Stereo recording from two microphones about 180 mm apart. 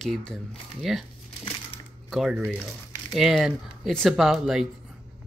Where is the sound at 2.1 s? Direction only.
Centre (ahead or behind).